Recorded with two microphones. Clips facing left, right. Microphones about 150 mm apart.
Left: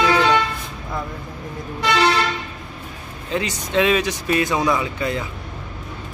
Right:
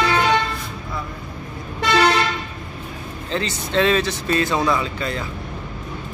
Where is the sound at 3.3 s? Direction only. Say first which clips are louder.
Left 1 dB; 10° left (ahead or behind).